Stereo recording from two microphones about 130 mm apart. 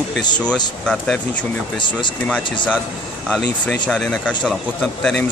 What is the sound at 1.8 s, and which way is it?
Speech, 35° left (ahead or behind).